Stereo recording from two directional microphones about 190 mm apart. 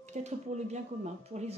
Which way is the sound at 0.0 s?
40° right (ahead or behind).